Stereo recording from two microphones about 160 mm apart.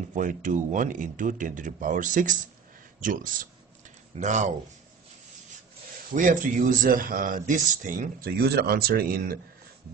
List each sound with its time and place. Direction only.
0.1 s speech: 55° right (ahead or behind)
6.1 s speech: 55° right (ahead or behind)